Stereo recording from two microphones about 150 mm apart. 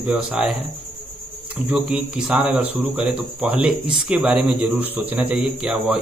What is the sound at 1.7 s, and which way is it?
Speech, 5° right (ahead or behind).